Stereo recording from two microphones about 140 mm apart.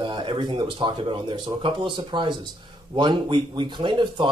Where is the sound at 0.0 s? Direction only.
35° right (ahead or behind).